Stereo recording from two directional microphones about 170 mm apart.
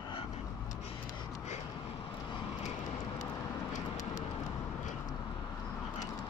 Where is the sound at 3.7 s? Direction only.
20° left (ahead or behind).